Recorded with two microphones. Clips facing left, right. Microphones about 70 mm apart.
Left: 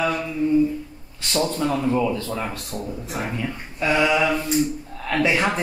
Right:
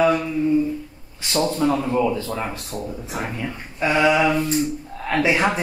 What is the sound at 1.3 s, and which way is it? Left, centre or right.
A man's voice, centre.